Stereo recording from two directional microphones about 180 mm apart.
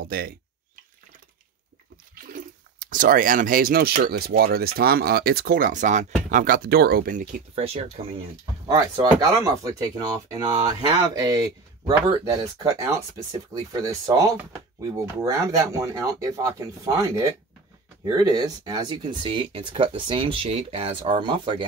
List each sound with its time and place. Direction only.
0.0 s speech: 55° right (ahead or behind)
2.1 s speech: 50° right (ahead or behind); by 8.3 s 35° right (ahead or behind)
8.6 s speech: 15° right (ahead or behind)